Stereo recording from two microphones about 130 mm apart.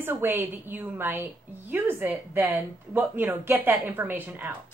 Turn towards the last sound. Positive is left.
turn(degrees=-15)  # may be behind; listen again after turning